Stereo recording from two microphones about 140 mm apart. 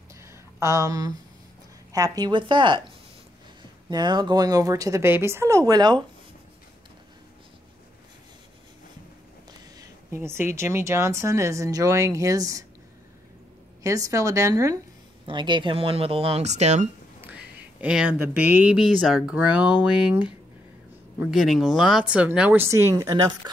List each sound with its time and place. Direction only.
0.1 s a sound: 20° right (ahead or behind)
1.9 s speech: 25° right (ahead or behind)
3.9 s speech: 30° right (ahead or behind)
9.8 s speech: 20° right (ahead or behind)
13.8 s speech: 25° right (ahead or behind)
15.2 s speech: 35° right (ahead or behind); by 16.9 s 55° right (ahead or behind)
17.2 s speech: 10° right (ahead or behind); by 23.3 s 25° right (ahead or behind)